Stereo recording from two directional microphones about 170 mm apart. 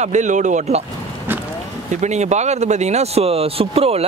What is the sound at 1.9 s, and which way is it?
Speech, 45° right (ahead or behind).